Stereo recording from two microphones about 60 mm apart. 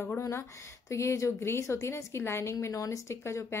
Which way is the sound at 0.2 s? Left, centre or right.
Left.